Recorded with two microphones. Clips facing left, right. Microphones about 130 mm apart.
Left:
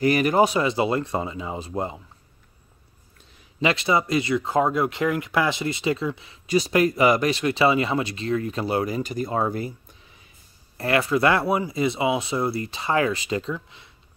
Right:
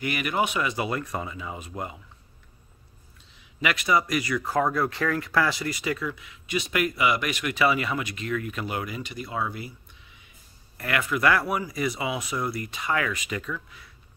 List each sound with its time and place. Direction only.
0.0 s speech: 35° left (ahead or behind)
3.6 s speech: 30° left (ahead or behind)